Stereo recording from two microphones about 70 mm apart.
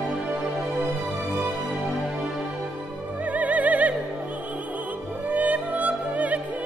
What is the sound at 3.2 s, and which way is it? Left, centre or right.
Music, right.